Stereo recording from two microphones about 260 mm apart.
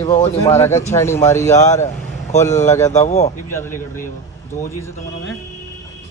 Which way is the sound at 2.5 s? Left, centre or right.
Left.